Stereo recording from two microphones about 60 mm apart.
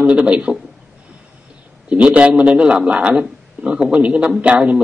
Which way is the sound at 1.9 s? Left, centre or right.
Right.